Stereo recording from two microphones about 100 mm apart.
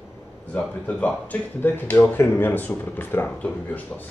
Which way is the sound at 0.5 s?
15° left (ahead or behind).